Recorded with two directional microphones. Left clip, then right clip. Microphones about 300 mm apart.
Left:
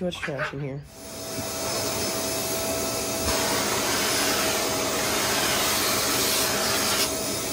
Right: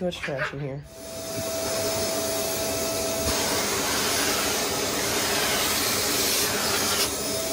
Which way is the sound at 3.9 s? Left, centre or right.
Centre.